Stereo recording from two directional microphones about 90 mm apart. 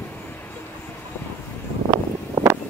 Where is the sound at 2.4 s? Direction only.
30° right (ahead or behind).